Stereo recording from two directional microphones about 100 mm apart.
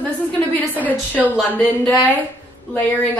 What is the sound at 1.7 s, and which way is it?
A woman's voice, 15° left (ahead or behind).